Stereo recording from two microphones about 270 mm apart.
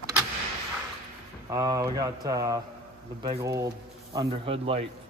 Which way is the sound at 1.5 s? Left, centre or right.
Centre.